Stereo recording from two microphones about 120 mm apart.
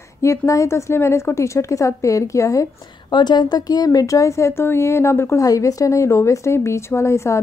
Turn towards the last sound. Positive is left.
turn(degrees=25)  # may be behind; listen again after turning